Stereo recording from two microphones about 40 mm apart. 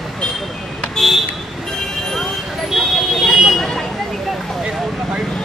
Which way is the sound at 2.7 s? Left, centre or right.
Centre.